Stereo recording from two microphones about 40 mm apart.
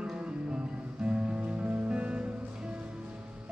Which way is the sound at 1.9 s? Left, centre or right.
Right.